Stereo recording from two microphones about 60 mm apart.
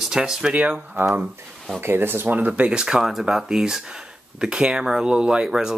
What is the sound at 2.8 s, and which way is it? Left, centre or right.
Speech, centre.